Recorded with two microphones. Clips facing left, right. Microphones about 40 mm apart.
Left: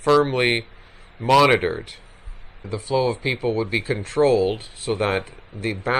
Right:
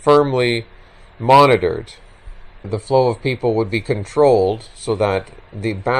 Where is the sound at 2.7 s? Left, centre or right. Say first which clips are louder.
Right 6 dB; centre.